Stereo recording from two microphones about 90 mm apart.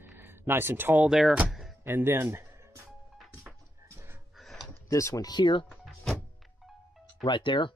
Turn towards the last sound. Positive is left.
turn(degrees=60)  # may be behind; listen again after turning